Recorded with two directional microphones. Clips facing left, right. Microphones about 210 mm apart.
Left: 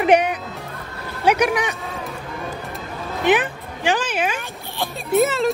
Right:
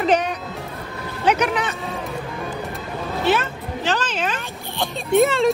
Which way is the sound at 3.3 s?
15° left (ahead or behind).